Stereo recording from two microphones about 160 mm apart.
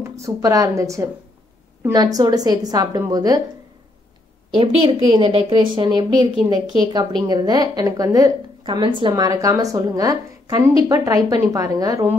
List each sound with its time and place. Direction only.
0.0 s speech: 20° right (ahead or behind)
4.6 s a woman's voice: 35° right (ahead or behind)
6.3 s a woman's voice: 35° left (ahead or behind)
6.9 s speech: 25° right (ahead or behind)